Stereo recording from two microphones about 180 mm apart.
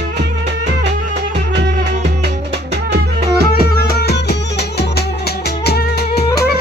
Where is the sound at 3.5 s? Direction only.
60° left (ahead or behind).